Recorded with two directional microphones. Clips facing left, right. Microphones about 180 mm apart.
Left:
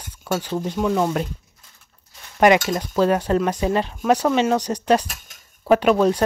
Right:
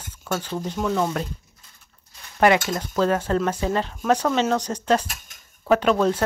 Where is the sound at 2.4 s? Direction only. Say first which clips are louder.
Left 3 dB; 15° left (ahead or behind).